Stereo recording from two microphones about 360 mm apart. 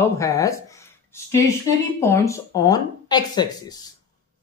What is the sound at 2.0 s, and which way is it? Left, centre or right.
Speech, centre.